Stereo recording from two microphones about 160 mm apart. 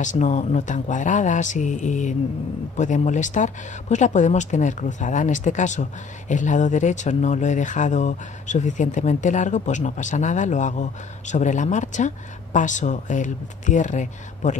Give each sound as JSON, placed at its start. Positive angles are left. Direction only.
{"t": 0.0, "sound": "speech", "side_deg": 50}